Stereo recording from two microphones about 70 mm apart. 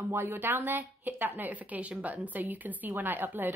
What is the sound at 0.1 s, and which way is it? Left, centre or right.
A woman's voice, right.